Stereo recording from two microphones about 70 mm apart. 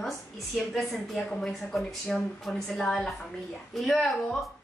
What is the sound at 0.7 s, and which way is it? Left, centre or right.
A woman's voice, centre.